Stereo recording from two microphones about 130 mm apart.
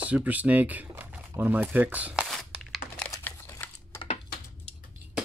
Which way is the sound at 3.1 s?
20° left (ahead or behind).